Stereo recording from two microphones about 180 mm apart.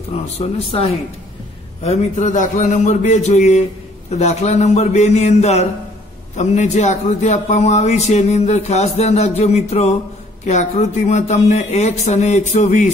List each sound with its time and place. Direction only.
0.4 s a man's voice: 35° left (ahead or behind)